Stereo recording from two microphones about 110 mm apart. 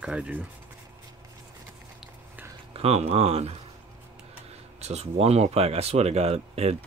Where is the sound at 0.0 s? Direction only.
10° right (ahead or behind).